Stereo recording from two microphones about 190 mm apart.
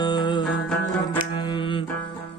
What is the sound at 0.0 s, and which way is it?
Music, 20° left (ahead or behind).